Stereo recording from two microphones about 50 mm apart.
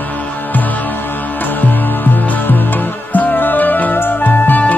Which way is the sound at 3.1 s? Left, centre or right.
Left.